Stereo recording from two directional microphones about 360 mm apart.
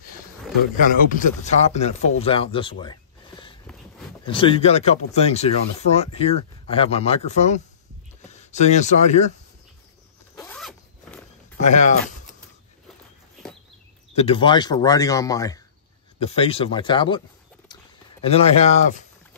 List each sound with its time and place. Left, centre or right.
0.9 s speech: centre
10.3 s zipper: centre
11.6 s speech: centre
14.1 s speech: centre
18.2 s speech: centre